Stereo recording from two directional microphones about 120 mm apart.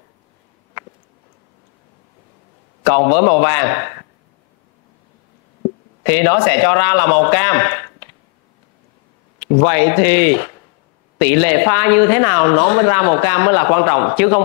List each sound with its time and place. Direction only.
2.9 s speech: 20° left (ahead or behind)
6.0 s speech: 20° left (ahead or behind)
9.6 s speech: 20° left (ahead or behind)